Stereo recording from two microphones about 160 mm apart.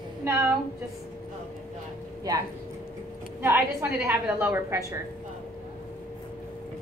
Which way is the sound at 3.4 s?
15° right (ahead or behind).